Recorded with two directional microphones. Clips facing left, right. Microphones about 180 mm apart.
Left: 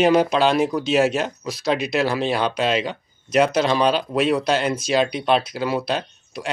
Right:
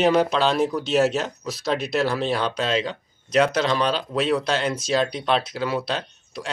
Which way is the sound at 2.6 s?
65° left (ahead or behind).